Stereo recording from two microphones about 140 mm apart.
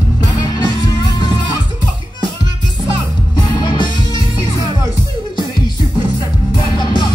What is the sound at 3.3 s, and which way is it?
Music, 30° left (ahead or behind).